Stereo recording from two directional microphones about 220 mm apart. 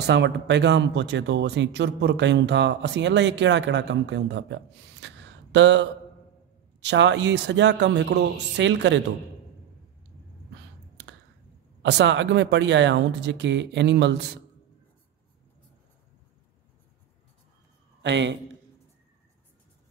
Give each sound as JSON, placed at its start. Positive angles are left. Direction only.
{"t": 0.0, "sound": "speech", "side_deg": -50}
{"t": 5.0, "sound": "a sound", "side_deg": -55}
{"t": 6.8, "sound": "speech", "side_deg": -55}
{"t": 11.8, "sound": "speech", "side_deg": -50}
{"t": 18.0, "sound": "speech", "side_deg": -55}